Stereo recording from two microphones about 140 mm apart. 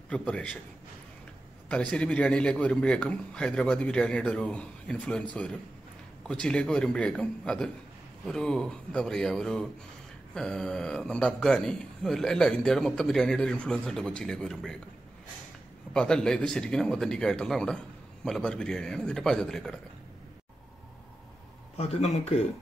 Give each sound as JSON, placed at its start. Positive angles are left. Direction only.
{"t": 0.1, "sound": "a man's voice", "side_deg": 10}
{"t": 1.7, "sound": "a man's voice", "side_deg": 5}
{"t": 15.9, "sound": "a man's voice", "side_deg": 5}
{"t": 21.7, "sound": "speech", "side_deg": 50}